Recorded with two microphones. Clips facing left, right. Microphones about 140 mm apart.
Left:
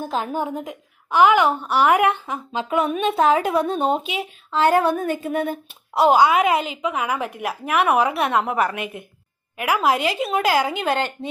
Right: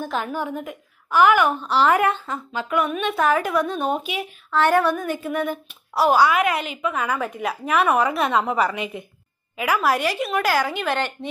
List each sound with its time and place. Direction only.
0.0 s a woman's voice: 30° left (ahead or behind)
0.6 s a woman's voice: 20° left (ahead or behind)
2.5 s a woman's voice: 30° left (ahead or behind); by 8.7 s centre (ahead or behind)
8.7 s a woman's voice: 55° left (ahead or behind)
9.8 s speech: 20° left (ahead or behind)